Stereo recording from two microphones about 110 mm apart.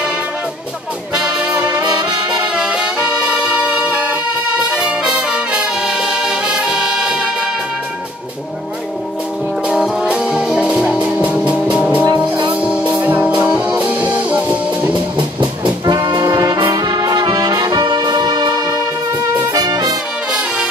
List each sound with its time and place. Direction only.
1.2 s brass instrument: 15° right (ahead or behind)
1.8 s brass instrument: 40° right (ahead or behind)
2.5 s music: 10° right (ahead or behind)
4.6 s brass instrument: 10° right (ahead or behind)
9.7 s music: 10° right (ahead or behind)
15.1 s brass instrument: 45° right (ahead or behind)
20.2 s music: 10° right (ahead or behind)